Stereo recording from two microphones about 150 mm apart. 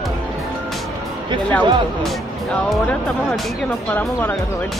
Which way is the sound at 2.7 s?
Centre (ahead or behind).